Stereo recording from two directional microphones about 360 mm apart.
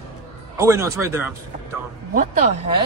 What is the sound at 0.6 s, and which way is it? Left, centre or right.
Speech, centre.